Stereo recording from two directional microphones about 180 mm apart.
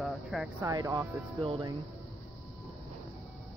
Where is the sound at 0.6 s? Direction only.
15° right (ahead or behind).